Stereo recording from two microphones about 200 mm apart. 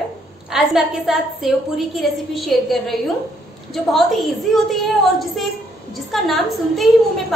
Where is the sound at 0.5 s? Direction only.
Centre (ahead or behind).